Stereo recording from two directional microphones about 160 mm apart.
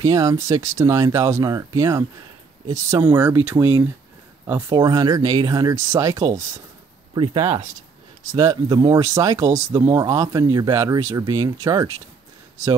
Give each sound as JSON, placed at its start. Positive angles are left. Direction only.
{"t": 0.0, "sound": "speech", "side_deg": -20}
{"t": 4.6, "sound": "speech", "side_deg": -25}
{"t": 7.2, "sound": "speech", "side_deg": -35}
{"t": 8.3, "sound": "speech", "side_deg": -20}